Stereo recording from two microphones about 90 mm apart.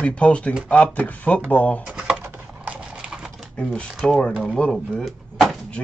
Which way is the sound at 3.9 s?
5° right (ahead or behind).